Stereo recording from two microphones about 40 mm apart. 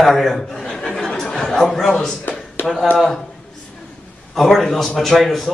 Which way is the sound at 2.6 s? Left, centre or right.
Left.